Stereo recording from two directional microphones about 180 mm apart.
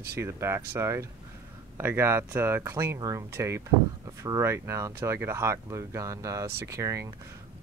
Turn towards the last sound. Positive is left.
turn(degrees=-15)  # may be behind; listen again after turning